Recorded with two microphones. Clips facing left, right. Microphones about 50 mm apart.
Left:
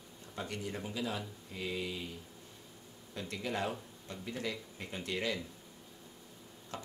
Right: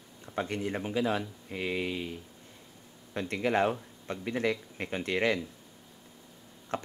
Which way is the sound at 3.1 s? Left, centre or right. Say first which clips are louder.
Right 9 dB; right.